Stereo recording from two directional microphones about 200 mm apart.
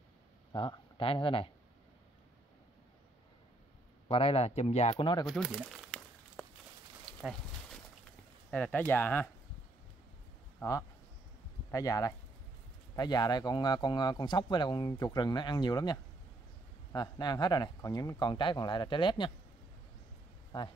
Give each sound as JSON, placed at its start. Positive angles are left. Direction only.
{"t": 0.5, "sound": "speech", "side_deg": 25}
{"t": 4.1, "sound": "speech", "side_deg": 30}
{"t": 5.2, "sound": "crumpling", "side_deg": 0}
{"t": 7.2, "sound": "a sound", "side_deg": 0}
{"t": 8.5, "sound": "speech", "side_deg": 5}
{"t": 10.6, "sound": "speech", "side_deg": 15}